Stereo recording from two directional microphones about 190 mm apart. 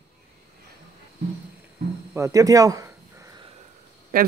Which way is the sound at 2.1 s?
15° right (ahead or behind).